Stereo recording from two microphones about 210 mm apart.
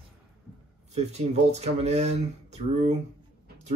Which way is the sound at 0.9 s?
30° right (ahead or behind).